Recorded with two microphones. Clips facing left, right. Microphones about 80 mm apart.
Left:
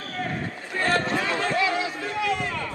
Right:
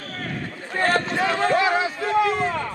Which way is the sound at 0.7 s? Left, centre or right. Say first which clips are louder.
Right 3 dB; right.